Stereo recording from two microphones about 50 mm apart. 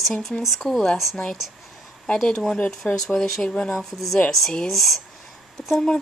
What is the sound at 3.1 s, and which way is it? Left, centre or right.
Speech, centre.